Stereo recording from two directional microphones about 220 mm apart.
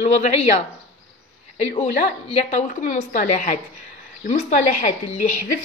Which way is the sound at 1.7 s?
25° left (ahead or behind).